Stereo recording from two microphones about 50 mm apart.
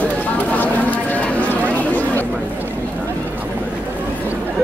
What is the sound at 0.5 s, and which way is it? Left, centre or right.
Cattle, left.